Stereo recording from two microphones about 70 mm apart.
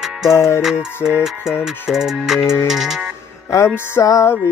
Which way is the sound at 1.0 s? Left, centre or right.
Left.